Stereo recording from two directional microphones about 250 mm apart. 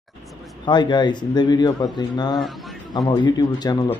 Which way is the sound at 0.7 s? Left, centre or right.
Centre.